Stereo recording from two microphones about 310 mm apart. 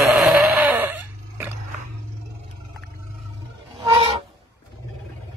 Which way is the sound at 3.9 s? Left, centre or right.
Centre.